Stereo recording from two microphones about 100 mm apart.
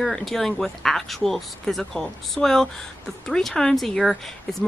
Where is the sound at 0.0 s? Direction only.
5° left (ahead or behind).